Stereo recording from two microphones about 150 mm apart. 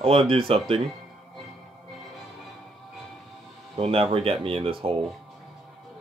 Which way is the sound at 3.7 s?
40° right (ahead or behind).